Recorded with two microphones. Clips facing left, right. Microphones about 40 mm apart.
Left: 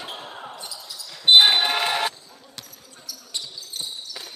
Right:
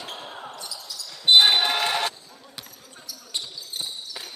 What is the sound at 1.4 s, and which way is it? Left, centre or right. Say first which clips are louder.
Basketball bounce: left 1 dB; centre.